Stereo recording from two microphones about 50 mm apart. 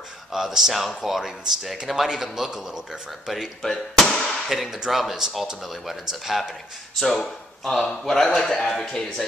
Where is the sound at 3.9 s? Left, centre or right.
Centre.